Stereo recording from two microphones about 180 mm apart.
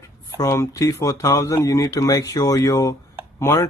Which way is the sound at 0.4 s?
15° left (ahead or behind).